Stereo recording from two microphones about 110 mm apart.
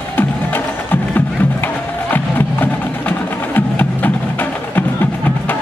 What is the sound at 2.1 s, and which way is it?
Music, 15° left (ahead or behind).